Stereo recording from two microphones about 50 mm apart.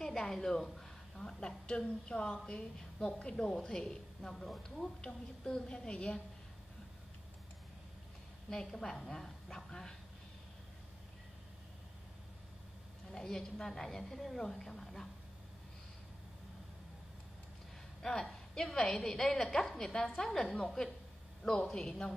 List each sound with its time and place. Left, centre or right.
0.0 s a woman's voice: centre
8.5 s a woman's voice: centre
13.1 s a woman's voice: centre
18.0 s a woman's voice: centre